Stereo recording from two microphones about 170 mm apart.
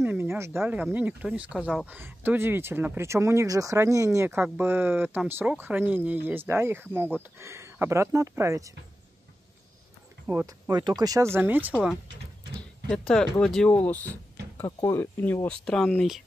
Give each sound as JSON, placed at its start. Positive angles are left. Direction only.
{"t": 0.0, "sound": "speech", "side_deg": -15}
{"t": 10.4, "sound": "speech", "side_deg": -25}
{"t": 11.3, "sound": "speech", "side_deg": -10}
{"t": 12.5, "sound": "speech", "side_deg": 5}